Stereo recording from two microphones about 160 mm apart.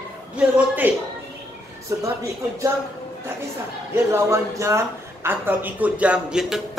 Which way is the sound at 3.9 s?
15° right (ahead or behind).